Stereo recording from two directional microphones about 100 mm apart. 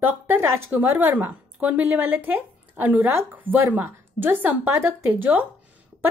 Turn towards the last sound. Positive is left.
turn(degrees=-15)  # may be behind; listen again after turning